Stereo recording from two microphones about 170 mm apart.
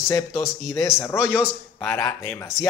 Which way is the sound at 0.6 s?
20° left (ahead or behind).